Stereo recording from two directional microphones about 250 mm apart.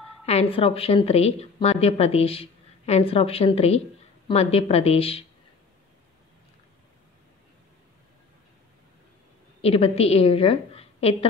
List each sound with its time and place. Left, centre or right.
0.2 s a woman's voice: left
9.6 s a woman's voice: left